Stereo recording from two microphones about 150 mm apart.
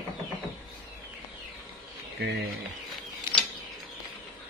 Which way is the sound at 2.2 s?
90° right.